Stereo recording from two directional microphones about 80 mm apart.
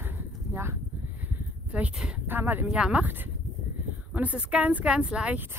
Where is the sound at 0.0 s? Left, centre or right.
Right.